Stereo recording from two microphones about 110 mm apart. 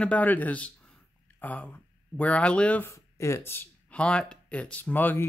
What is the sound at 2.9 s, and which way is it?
Speech, 25° left (ahead or behind).